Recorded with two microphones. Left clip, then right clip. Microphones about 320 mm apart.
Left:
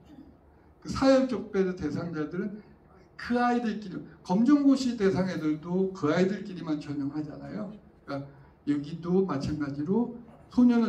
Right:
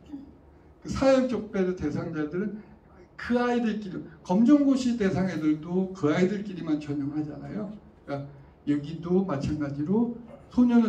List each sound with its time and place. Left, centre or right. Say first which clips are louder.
0.8 s a man's voice: right 1 dB; centre